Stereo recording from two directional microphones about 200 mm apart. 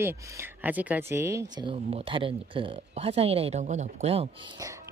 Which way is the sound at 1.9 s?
25° right (ahead or behind).